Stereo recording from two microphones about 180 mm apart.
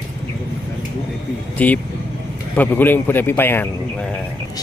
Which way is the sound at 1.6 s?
10° left (ahead or behind).